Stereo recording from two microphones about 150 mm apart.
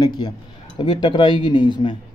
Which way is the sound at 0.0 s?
30° left (ahead or behind).